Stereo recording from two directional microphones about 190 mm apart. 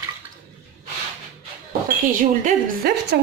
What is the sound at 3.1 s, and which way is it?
Speech, 60° right (ahead or behind).